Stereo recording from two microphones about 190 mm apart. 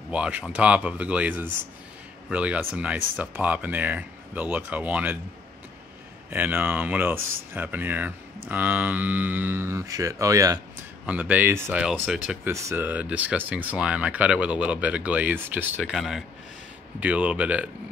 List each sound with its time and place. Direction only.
0.1 s speech: 5° right (ahead or behind)
6.3 s speech: 10° right (ahead or behind)
12.4 s speech: 15° right (ahead or behind)